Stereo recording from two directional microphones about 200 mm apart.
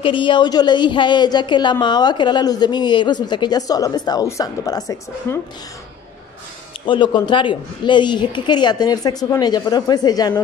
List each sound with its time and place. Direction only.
0.0 s a woman's voice: 25° left (ahead or behind)
6.9 s a woman's voice: 25° left (ahead or behind)